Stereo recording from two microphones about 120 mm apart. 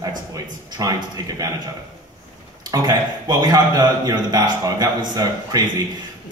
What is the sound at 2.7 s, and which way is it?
A man's voice, 35° right (ahead or behind).